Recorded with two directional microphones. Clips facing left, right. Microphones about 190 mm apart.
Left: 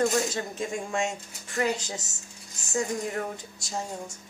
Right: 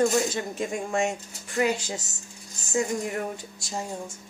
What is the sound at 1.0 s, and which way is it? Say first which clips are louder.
Speech: right 3 dB; 20° right (ahead or behind).